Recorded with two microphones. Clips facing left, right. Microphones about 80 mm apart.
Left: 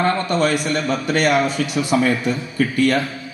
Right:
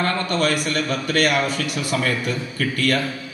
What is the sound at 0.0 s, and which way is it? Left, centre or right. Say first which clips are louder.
A man's voice: left 3 dB; left.